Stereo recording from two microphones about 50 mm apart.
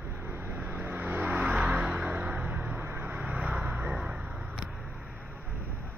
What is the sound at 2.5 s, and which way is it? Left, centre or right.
Vehicle, right.